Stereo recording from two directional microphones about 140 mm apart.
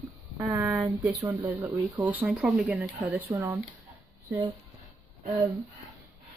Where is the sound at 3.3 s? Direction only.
20° right (ahead or behind).